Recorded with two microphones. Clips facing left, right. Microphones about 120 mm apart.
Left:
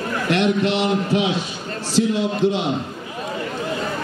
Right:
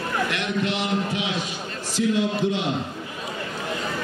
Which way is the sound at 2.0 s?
50° left (ahead or behind).